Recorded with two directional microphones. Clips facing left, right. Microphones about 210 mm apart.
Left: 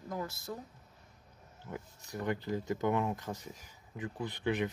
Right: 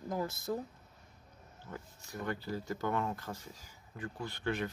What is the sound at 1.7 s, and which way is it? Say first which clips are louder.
Speech: left 3 dB; 15° left (ahead or behind).